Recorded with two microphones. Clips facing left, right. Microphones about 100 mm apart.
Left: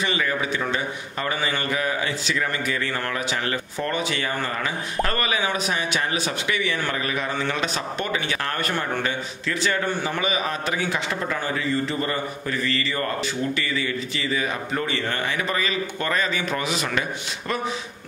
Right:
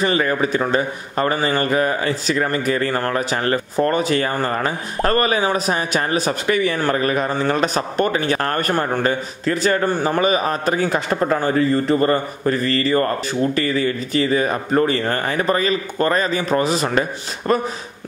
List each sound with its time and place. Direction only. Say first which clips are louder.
0.0 s a man's voice: right 7 dB; 45° right (ahead or behind)